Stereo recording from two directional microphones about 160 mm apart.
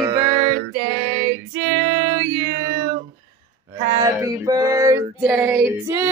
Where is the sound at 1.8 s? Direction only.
65° right (ahead or behind).